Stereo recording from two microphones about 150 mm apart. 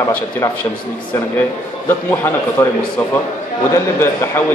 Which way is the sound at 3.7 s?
15° left (ahead or behind).